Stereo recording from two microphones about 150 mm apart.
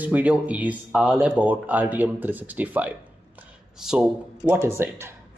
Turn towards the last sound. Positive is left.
turn(degrees=-15)  # may be behind; listen again after turning